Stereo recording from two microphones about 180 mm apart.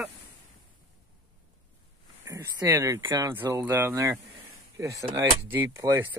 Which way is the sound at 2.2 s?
15° right (ahead or behind).